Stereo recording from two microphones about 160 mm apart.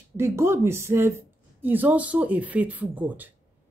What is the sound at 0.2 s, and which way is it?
Speech, 15° right (ahead or behind).